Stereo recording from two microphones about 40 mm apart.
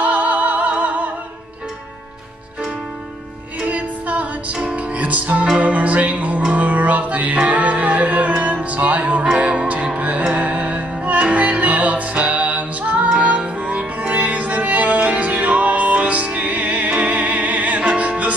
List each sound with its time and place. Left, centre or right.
0.0 s music: right
3.6 s music: right